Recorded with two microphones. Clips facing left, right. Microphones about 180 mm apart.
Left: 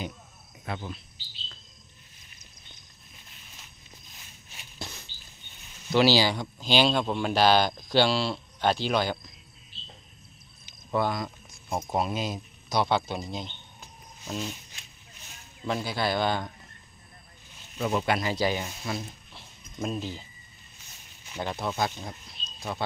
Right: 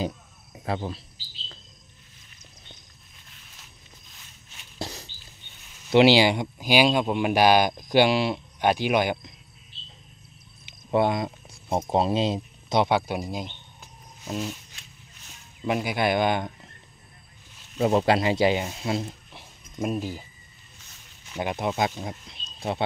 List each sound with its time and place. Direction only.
0.7 s speech: 35° right (ahead or behind)
4.7 s dog: 35° right (ahead or behind)
5.9 s speech: 20° right (ahead or behind)
10.9 s speech: 25° right (ahead or behind)
12.9 s cricket: 10° right (ahead or behind)
15.6 s speech: 15° right (ahead or behind)
17.7 s speech: 35° right (ahead or behind)
19.3 s a sound: 10° right (ahead or behind)
21.4 s speech: 15° right (ahead or behind)